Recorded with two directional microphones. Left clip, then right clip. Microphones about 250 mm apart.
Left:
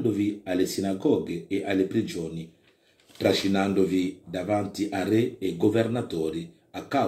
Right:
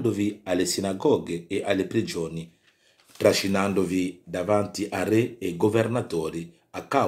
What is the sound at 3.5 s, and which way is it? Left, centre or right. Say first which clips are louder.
Speech: even; right.